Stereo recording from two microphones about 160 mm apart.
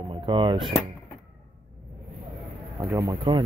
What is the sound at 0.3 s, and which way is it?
Speech, 30° right (ahead or behind).